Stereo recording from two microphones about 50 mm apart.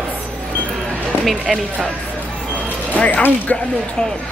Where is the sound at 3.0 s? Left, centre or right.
Left.